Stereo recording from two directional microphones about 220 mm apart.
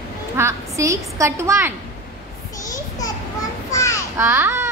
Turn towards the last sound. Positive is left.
turn(degrees=-10)  # may be behind; listen again after turning